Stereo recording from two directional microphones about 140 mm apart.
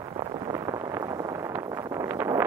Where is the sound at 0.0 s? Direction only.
30° right (ahead or behind).